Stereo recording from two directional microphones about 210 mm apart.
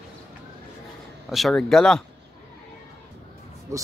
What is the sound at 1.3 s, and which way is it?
Speech, centre (ahead or behind).